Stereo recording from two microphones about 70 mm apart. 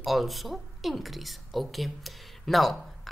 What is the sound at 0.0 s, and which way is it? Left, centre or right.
A woman's voice, centre.